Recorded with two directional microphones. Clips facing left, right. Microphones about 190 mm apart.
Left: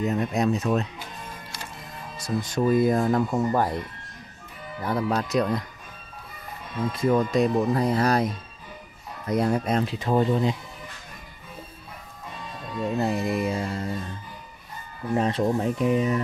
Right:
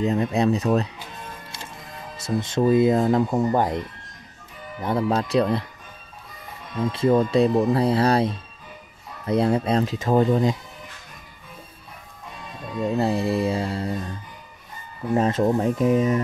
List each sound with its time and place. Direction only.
0.0 s music: 30° right (ahead or behind)
2.1 s speech: 25° right (ahead or behind)
4.8 s speech: 30° right (ahead or behind)
6.9 s speech: 30° right (ahead or behind)
9.9 s speech: 45° right (ahead or behind)
13.0 s music: 30° right (ahead or behind)
15.1 s speech: 45° right (ahead or behind)